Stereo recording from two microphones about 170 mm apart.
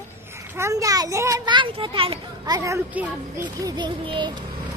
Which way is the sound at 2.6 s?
15° right (ahead or behind).